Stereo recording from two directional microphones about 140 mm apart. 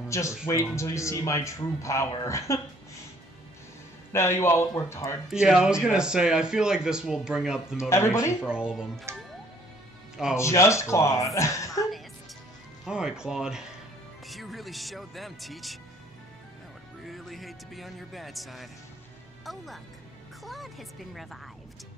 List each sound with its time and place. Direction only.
0.1 s speech: 20° left (ahead or behind)
4.1 s speech: 20° left (ahead or behind)
5.3 s speech: 5° right (ahead or behind)
7.9 s speech: 20° left (ahead or behind)
8.4 s speech: 5° right (ahead or behind)
9.1 s speech: 20° right (ahead or behind)
10.3 s speech: 20° left (ahead or behind)
12.8 s speech: 5° right (ahead or behind)
17.0 s speech: centre (ahead or behind)